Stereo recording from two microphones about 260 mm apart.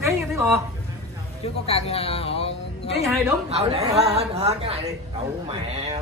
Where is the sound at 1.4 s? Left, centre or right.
Left.